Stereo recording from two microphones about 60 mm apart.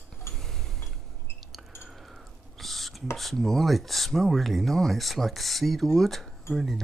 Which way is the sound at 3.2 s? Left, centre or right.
Centre.